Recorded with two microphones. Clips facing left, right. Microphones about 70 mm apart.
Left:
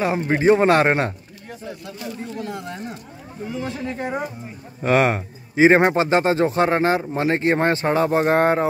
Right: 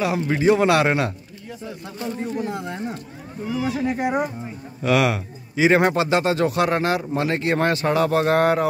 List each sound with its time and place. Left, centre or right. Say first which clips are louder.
0.0 s speech: left 1 dB; left
1.9 s speech: right 6 dB; right
3.8 s speech: right 4 dB; centre
4.8 s speech: left 2 dB; left